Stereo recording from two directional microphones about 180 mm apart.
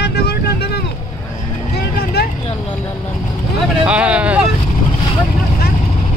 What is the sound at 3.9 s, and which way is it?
Vehicle, 5° right (ahead or behind).